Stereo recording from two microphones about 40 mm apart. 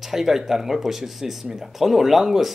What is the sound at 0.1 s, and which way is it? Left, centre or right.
Speech, centre.